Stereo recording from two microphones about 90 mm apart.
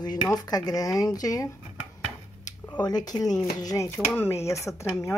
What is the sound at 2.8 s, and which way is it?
Speech, 50° left (ahead or behind).